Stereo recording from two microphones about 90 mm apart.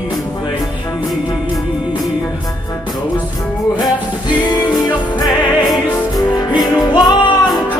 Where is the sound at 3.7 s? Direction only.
55° left (ahead or behind).